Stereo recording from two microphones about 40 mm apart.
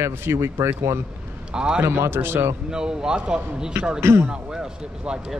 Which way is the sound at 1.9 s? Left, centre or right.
Right.